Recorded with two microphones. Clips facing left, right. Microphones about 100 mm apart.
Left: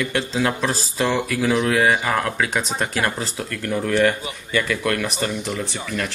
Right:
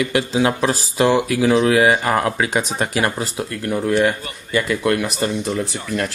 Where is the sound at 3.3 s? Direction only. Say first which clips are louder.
Right 2 dB; 20° right (ahead or behind).